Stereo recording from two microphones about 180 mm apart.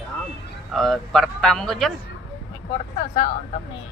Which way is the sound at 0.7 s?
Centre (ahead or behind).